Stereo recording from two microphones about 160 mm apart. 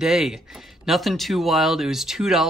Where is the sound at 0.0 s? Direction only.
Centre (ahead or behind).